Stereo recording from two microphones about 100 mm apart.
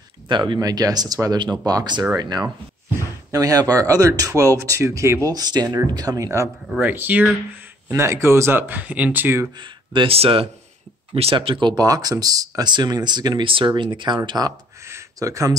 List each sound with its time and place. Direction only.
0.3 s speech: 55° right (ahead or behind)
0.6 s speech: 40° right (ahead or behind)
5.3 s speech: 40° right (ahead or behind)
6.8 s speech: 15° right (ahead or behind)
9.6 s speech: 50° right (ahead or behind)
10.1 s speech: 70° right (ahead or behind); by 13.5 s 45° right (ahead or behind)
13.5 s speech: 55° right (ahead or behind)
14.8 s speech: 30° right (ahead or behind)